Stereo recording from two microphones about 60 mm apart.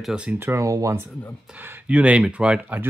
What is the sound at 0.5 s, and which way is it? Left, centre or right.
Speech, right.